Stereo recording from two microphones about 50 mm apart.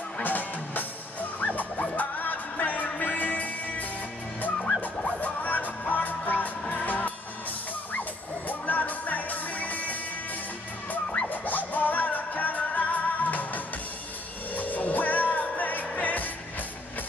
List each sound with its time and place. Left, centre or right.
0.2 s music: left
5.0 s music: left
8.5 s music: left
11.1 s music: left